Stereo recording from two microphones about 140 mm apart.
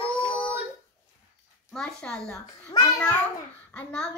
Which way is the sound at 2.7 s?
25° left (ahead or behind).